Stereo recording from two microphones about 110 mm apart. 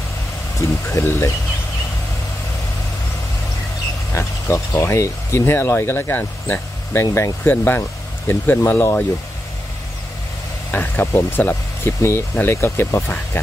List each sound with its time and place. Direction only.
0.8 s speech: 25° left (ahead or behind)
4.1 s speech: 25° left (ahead or behind)
10.7 s speech: 20° left (ahead or behind)